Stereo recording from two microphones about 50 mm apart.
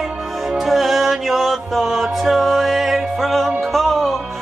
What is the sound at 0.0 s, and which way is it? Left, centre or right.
Music, centre.